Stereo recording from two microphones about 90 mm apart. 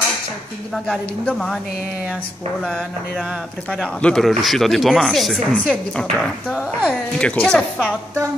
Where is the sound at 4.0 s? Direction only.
5° left (ahead or behind).